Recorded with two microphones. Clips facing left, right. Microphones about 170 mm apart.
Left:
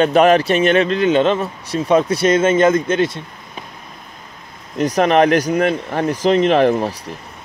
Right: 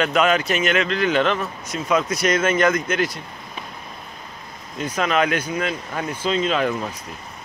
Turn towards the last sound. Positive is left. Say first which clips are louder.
# left 8 dB
turn(degrees=40)  # may be behind; listen again after turning